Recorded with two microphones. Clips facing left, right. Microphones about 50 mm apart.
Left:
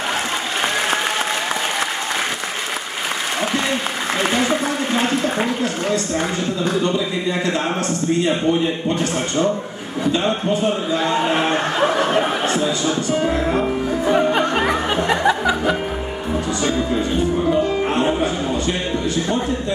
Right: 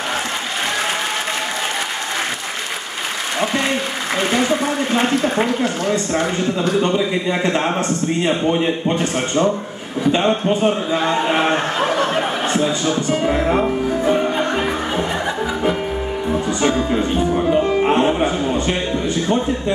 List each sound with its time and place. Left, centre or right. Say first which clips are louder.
5.6 s speech: right 1 dB; right
12.4 s speech: right 1 dB; right
13.3 s music: right 2 dB; right
13.7 s music: right 1 dB; centre
15.0 s music: left 4 dB; left
16.4 s music: right 2 dB; right
17.5 s speech: right 3 dB; right